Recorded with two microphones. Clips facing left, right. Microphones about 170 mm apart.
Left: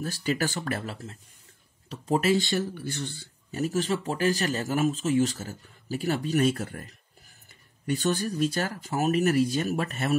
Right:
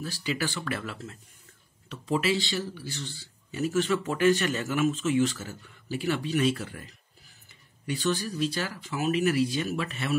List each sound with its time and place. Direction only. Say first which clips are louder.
0.0 s speech: left 3 dB; 45° left (ahead or behind)